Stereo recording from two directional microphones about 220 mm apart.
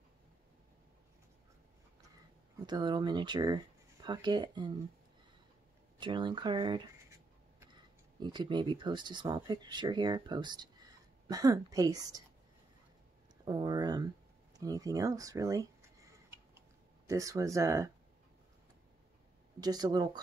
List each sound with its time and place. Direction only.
2.6 s speech: 20° right (ahead or behind)
5.9 s speech: 20° right (ahead or behind)
8.2 s speech: 20° right (ahead or behind)
13.5 s speech: 20° right (ahead or behind)
17.1 s speech: 15° right (ahead or behind)
19.6 s speech: 20° right (ahead or behind)